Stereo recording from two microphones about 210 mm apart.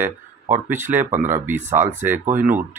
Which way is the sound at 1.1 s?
35° right (ahead or behind).